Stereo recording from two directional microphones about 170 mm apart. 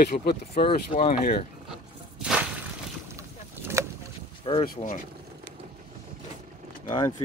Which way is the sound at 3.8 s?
15° right (ahead or behind).